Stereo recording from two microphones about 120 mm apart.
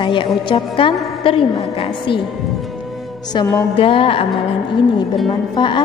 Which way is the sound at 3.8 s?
50° left (ahead or behind).